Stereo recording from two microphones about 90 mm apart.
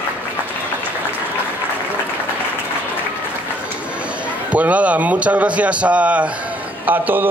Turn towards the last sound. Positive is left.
turn(degrees=-20)  # may be behind; listen again after turning